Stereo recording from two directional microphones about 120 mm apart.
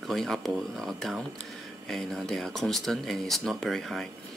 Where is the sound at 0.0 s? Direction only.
Centre (ahead or behind).